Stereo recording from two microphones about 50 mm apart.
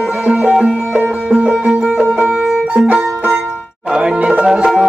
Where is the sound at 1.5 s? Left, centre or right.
Centre.